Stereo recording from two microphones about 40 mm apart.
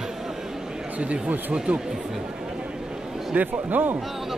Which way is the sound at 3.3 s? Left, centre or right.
Right.